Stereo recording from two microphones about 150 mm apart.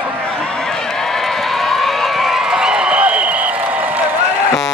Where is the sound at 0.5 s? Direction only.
5° left (ahead or behind); by 4.1 s 10° right (ahead or behind).